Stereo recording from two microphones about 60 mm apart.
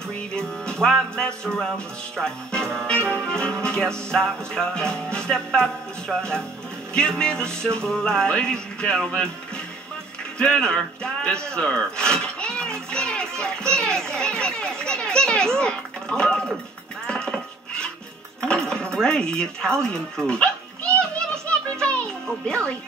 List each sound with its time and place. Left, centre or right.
0.1 s music: centre
10.4 s speech: centre
17.0 s dishes: centre
18.4 s music: centre
18.9 s dog: centre